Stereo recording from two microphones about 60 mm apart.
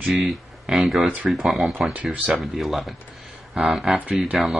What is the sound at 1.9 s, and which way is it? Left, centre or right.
Speech, right.